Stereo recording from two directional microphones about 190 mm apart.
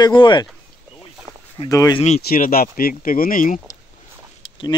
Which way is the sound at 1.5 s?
20° left (ahead or behind).